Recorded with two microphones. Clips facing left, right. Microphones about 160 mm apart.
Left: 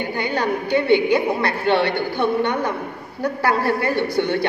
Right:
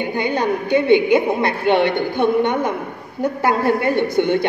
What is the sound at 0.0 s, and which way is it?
A woman's voice, 20° right (ahead or behind).